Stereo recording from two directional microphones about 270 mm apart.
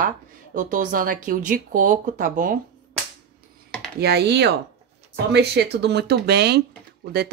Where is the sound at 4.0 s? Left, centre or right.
Right.